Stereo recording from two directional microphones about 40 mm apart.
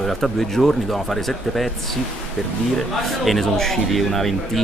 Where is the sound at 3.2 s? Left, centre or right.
Centre.